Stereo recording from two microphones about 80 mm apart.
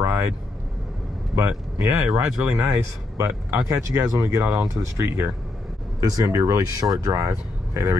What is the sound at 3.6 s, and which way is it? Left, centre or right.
Speech, right.